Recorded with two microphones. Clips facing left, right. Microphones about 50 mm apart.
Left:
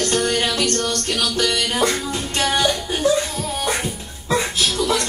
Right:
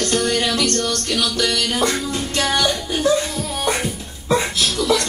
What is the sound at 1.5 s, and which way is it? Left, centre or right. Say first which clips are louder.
Speech: even; centre.